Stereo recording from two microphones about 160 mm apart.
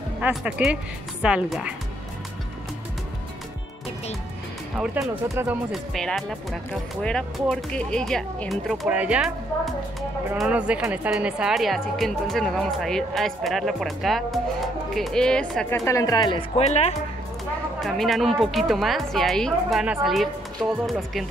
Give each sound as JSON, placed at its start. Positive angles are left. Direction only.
{"t": 0.2, "sound": "speech", "side_deg": -5}
{"t": 4.9, "sound": "speech", "side_deg": -15}
{"t": 5.7, "sound": "speech", "side_deg": 5}
{"t": 10.3, "sound": "speech", "side_deg": -5}
{"t": 15.7, "sound": "speech", "side_deg": 20}
{"t": 16.3, "sound": "speech", "side_deg": 40}
{"t": 17.7, "sound": "speech", "side_deg": 0}